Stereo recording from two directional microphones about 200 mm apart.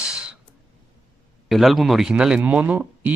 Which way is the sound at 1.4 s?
Centre (ahead or behind).